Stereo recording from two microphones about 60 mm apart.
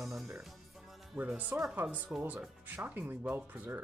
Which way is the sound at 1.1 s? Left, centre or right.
Right.